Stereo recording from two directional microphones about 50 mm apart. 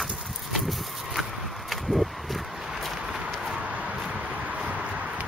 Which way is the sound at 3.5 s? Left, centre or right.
Right.